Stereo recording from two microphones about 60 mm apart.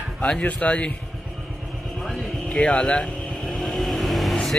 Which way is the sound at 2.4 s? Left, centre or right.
Centre.